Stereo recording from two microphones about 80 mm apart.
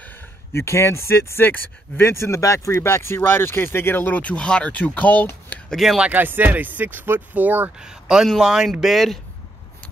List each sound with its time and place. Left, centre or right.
0.0 s speech: left
5.7 s speech: centre
6.0 s speech: right
7.8 s speech: centre